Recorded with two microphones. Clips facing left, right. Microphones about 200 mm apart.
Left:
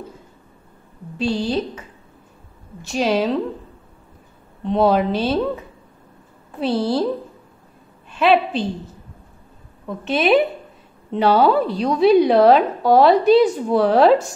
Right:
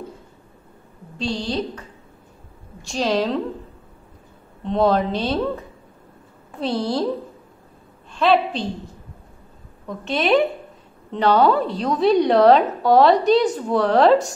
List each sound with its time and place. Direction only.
1.1 s a woman's voice: 5° left (ahead or behind)
4.6 s a woman's voice: 5° left (ahead or behind)
6.6 s a woman's voice: 5° left (ahead or behind)
8.2 s a woman's voice: 10° left (ahead or behind)
9.8 s a woman's voice: 5° left (ahead or behind)